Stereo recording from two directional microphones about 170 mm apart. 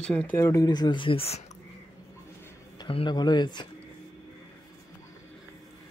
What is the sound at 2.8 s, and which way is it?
Speech, 30° left (ahead or behind).